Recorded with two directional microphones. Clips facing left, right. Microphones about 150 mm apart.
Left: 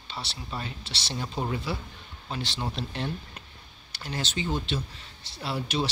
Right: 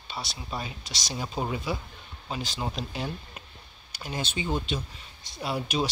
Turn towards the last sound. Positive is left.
turn(degrees=-15)  # may be behind; listen again after turning